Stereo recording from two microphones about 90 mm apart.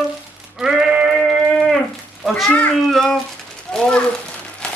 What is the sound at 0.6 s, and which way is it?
Sheep, 5° right (ahead or behind).